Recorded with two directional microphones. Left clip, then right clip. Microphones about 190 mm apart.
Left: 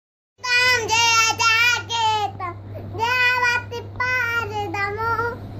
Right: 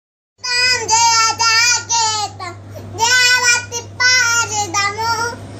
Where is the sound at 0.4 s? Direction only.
20° left (ahead or behind).